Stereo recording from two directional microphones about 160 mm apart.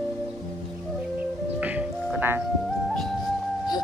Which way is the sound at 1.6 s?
10° right (ahead or behind).